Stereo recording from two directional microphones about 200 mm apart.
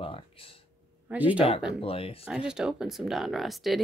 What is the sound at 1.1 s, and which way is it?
Speech, 10° right (ahead or behind).